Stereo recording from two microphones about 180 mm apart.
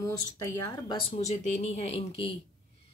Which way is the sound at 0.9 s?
35° left (ahead or behind).